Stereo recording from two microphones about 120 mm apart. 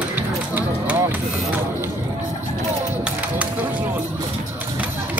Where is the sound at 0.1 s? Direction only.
15° right (ahead or behind).